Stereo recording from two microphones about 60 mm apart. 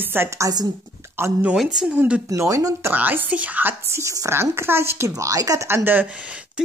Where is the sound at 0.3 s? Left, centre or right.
Right.